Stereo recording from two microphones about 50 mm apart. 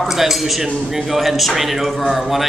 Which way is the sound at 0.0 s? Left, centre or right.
Centre.